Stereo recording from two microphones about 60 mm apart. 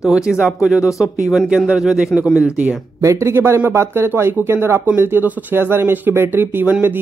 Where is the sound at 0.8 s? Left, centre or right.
Left.